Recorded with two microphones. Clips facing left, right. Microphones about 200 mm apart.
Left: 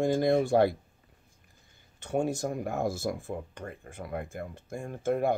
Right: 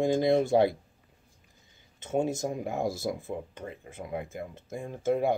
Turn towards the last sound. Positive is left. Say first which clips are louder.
# right 1 dB
turn(degrees=-15)  # may be behind; listen again after turning